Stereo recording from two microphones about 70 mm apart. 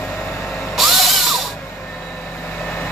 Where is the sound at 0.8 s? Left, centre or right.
Centre.